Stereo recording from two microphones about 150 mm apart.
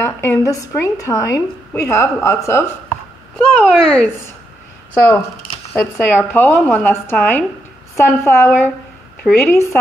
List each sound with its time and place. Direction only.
0.0 s a woman's voice: 15° left (ahead or behind)
3.3 s speech: 5° left (ahead or behind)
5.8 s speech: 15° left (ahead or behind)